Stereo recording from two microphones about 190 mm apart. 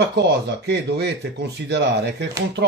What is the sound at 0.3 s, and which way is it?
Speech, 60° right (ahead or behind).